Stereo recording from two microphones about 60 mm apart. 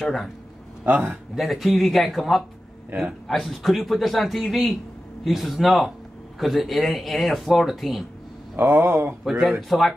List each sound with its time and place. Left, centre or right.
0.0 s speech: centre
0.8 s speech: right
1.3 s speech: centre
8.5 s speech: right
9.2 s speech: centre